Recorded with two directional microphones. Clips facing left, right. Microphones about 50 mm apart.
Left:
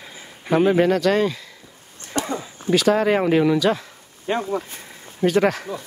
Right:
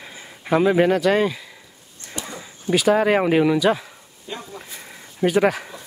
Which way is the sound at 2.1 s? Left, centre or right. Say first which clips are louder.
Left 8 dB; left.